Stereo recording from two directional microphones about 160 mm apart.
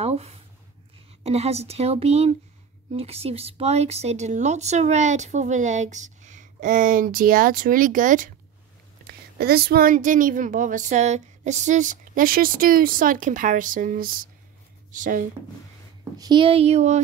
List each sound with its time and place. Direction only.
0.0 s speech: 40° right (ahead or behind); by 8.3 s 55° right (ahead or behind)
9.4 s speech: 75° right (ahead or behind); by 15.2 s 55° right (ahead or behind)
16.0 s speech: 25° right (ahead or behind); by 17.0 s 45° right (ahead or behind)